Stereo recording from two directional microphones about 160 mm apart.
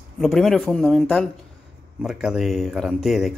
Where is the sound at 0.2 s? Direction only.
Centre (ahead or behind).